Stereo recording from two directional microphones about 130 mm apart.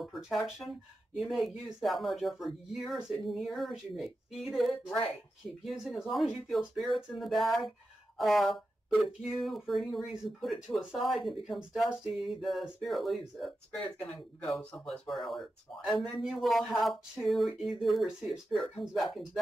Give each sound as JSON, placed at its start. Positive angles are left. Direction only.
{"t": 0.0, "sound": "speech", "side_deg": 0}